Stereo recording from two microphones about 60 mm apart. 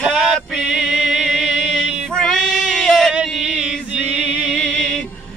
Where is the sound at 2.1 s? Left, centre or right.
Centre.